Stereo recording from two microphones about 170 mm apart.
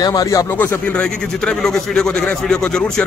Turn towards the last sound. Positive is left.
turn(degrees=5)  # may be behind; listen again after turning